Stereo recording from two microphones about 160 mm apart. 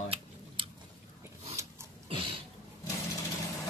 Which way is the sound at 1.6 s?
20° right (ahead or behind).